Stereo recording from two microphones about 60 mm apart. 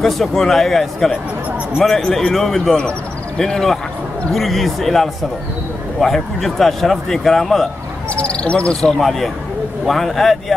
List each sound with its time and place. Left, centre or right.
0.0 s a man's voice: centre
8.1 s speech: centre
9.8 s a man's voice: centre